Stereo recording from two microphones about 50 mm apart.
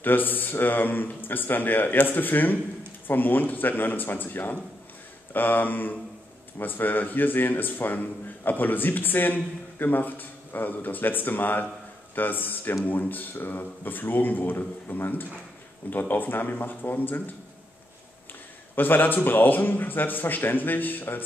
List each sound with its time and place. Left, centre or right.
0.0 s a man's voice: left
18.8 s a man's voice: left